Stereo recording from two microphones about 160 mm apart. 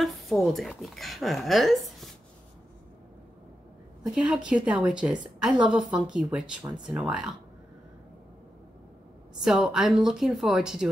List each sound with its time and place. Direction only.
0.5 s a woman's voice: centre (ahead or behind)
4.1 s a woman's voice: 5° right (ahead or behind)
9.4 s a woman's voice: 5° right (ahead or behind)